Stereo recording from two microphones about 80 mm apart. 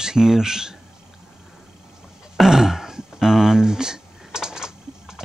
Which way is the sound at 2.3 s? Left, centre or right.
Centre.